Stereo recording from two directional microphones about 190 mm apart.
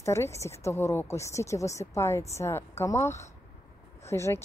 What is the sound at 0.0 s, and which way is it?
Speech, 15° left (ahead or behind).